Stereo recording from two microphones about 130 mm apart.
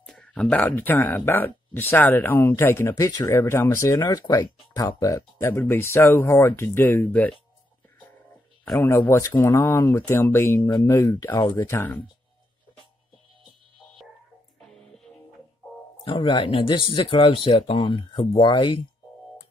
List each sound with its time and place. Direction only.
0.0 s speech: 5° left (ahead or behind)
8.7 s speech: 20° left (ahead or behind)
16.1 s speech: 40° left (ahead or behind)